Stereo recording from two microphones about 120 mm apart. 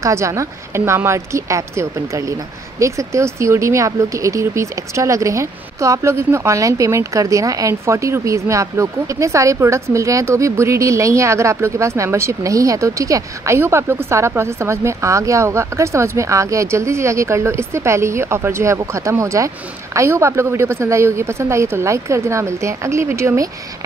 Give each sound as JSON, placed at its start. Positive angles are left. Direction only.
{"t": 0.0, "sound": "speech", "side_deg": -25}